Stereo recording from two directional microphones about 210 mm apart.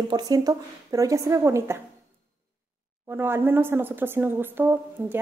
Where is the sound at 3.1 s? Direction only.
10° right (ahead or behind).